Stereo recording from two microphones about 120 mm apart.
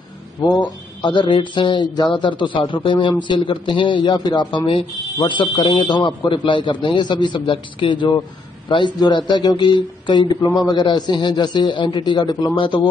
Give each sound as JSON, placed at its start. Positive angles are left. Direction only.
{"t": 0.5, "sound": "speech", "side_deg": 40}